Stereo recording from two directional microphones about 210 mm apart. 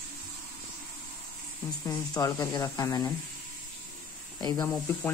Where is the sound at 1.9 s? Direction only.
15° left (ahead or behind).